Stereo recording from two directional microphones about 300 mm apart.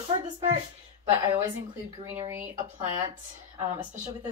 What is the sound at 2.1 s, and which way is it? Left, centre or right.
Speech, centre.